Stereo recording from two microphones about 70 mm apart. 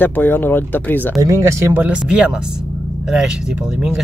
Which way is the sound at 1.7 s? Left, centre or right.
Right.